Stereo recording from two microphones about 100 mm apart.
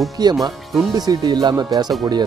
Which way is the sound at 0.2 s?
40° right (ahead or behind).